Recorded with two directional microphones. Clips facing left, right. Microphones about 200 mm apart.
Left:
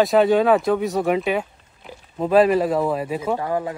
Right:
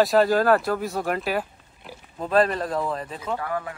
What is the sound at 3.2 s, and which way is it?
Speech, 20° left (ahead or behind).